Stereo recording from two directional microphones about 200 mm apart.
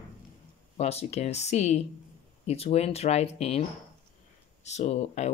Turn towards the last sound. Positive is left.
turn(degrees=35)  # may be behind; listen again after turning